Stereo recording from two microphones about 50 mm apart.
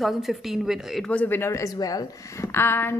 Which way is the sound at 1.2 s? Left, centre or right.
Left.